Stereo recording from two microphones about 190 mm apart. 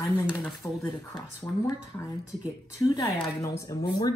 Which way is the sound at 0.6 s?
15° left (ahead or behind).